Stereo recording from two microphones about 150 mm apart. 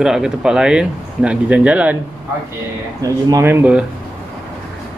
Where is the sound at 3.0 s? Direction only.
20° right (ahead or behind).